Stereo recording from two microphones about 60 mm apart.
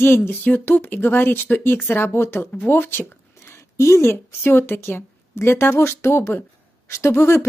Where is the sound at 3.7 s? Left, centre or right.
Left.